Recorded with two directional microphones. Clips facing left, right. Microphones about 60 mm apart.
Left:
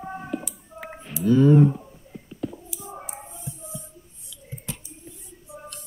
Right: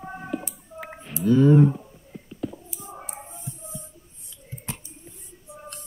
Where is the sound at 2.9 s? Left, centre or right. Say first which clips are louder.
Left 1 dB; centre.